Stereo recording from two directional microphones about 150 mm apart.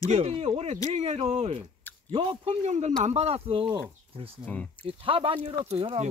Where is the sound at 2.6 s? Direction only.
50° right (ahead or behind).